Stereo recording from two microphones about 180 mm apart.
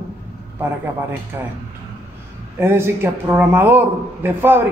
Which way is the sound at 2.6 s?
15° right (ahead or behind).